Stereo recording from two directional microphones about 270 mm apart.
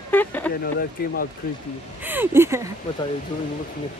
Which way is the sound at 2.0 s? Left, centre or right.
Centre.